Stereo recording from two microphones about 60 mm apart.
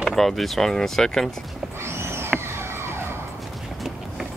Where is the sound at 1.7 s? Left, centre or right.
Right.